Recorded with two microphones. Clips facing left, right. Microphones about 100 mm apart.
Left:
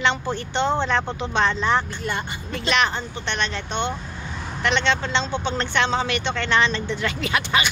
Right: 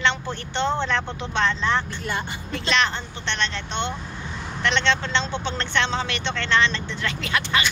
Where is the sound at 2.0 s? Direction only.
Centre (ahead or behind).